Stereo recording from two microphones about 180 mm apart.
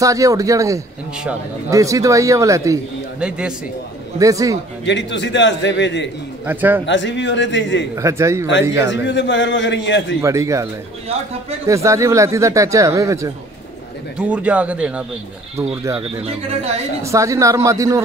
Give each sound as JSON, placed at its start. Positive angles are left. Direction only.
{"t": 0.0, "sound": "speech", "side_deg": -20}
{"t": 3.2, "sound": "speech", "side_deg": -5}
{"t": 4.2, "sound": "a man's voice", "side_deg": -20}
{"t": 4.8, "sound": "a man's voice", "side_deg": 85}
{"t": 6.4, "sound": "speech", "side_deg": -10}
{"t": 6.9, "sound": "a man's voice", "side_deg": 85}
{"t": 7.9, "sound": "speech", "side_deg": -15}
{"t": 8.9, "sound": "a man's voice", "side_deg": 80}
{"t": 10.2, "sound": "speech", "side_deg": -15}
{"t": 14.1, "sound": "speech", "side_deg": -5}
{"t": 16.2, "sound": "speech", "side_deg": -35}
{"t": 17.0, "sound": "speech", "side_deg": -15}